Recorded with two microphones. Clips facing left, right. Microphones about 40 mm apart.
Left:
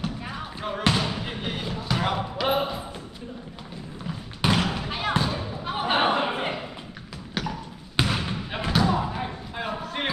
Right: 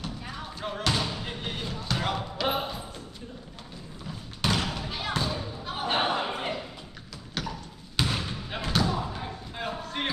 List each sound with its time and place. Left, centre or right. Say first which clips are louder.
0.0 s music: left 5 dB; left
0.8 s basketball bounce: left 4 dB; left
4.5 s thump: left 4 dB; left
7.3 s basketball bounce: left 4 dB; left
8.5 s thump: left 4 dB; centre
9.6 s a sound: left 3 dB; centre